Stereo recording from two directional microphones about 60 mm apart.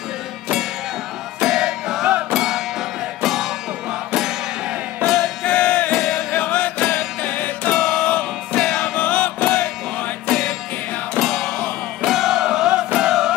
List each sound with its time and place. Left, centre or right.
1.4 s music: centre
5.4 s music: left
5.9 s music: centre
6.3 s music: left
7.7 s music: centre
8.0 s music: left
8.5 s music: centre
8.9 s music: left
11.1 s music: centre